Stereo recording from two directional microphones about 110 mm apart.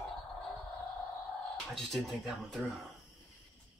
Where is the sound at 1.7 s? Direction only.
5° left (ahead or behind).